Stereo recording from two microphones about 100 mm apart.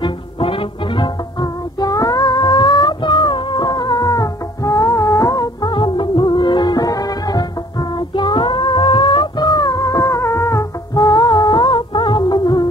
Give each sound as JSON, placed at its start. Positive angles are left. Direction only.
{"t": 0.0, "sound": "music", "side_deg": 60}
{"t": 5.7, "sound": "music", "side_deg": 55}
{"t": 8.1, "sound": "music", "side_deg": 55}
{"t": 11.0, "sound": "music", "side_deg": 40}